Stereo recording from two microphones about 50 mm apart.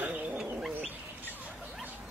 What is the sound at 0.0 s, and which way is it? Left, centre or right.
Bird, right.